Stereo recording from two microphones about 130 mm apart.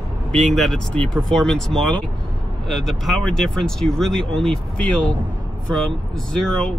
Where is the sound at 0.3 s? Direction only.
5° left (ahead or behind).